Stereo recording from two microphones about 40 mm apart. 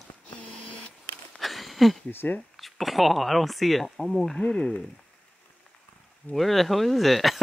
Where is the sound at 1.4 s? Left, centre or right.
Centre.